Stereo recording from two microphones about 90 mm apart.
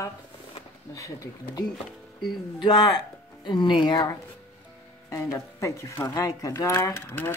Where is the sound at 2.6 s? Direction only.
50° left (ahead or behind).